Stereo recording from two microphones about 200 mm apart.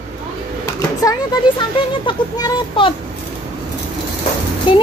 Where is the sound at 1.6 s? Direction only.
20° left (ahead or behind).